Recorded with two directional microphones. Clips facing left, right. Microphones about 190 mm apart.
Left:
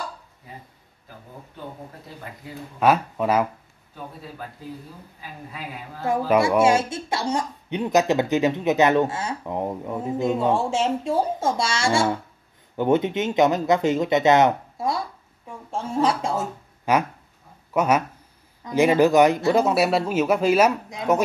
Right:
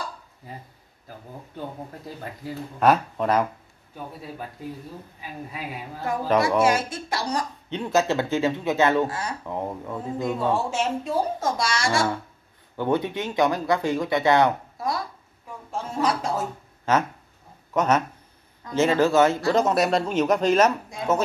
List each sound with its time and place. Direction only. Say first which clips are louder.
2.8 s speech: left 1 dB; 5° left (ahead or behind)
6.6 s speech: left 3 dB; 25° left (ahead or behind)
16.9 s speech: left 1 dB; 10° left (ahead or behind)